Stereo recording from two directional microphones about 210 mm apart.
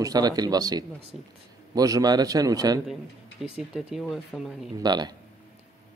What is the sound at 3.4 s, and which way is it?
Speech, 5° right (ahead or behind).